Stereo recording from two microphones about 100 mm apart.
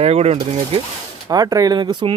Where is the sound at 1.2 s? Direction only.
40° right (ahead or behind).